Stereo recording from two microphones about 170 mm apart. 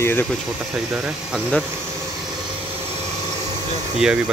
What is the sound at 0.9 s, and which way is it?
Speech, 5° right (ahead or behind).